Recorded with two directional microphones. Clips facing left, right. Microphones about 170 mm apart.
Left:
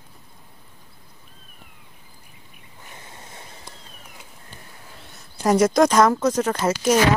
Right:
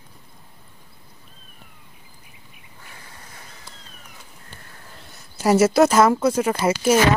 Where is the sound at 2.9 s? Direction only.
25° left (ahead or behind).